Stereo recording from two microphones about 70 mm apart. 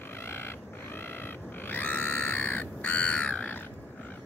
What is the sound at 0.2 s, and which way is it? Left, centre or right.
Grunt, left.